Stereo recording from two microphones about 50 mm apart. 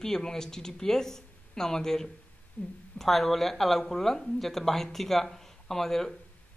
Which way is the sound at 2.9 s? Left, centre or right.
Centre.